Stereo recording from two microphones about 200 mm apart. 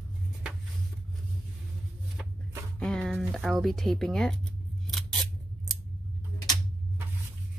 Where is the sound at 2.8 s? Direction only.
5° left (ahead or behind).